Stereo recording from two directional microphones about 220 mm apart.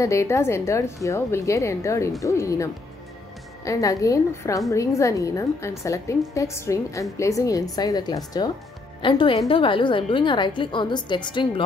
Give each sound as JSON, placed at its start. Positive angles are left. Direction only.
{"t": 0.0, "sound": "a woman's voice", "side_deg": 15}